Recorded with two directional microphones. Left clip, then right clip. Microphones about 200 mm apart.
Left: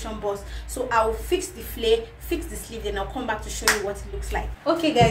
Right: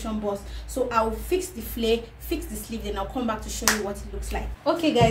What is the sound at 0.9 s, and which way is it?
A woman's voice, 20° right (ahead or behind).